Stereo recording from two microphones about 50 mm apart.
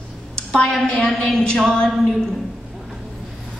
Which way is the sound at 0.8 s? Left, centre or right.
Centre.